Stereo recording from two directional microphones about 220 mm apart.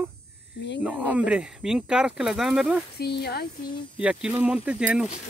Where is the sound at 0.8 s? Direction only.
5° right (ahead or behind).